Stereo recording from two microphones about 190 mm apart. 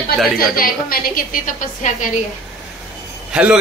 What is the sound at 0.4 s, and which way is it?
A woman's voice, 50° left (ahead or behind).